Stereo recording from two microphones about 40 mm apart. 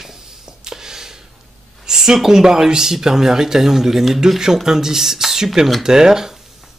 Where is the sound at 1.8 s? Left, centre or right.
Centre.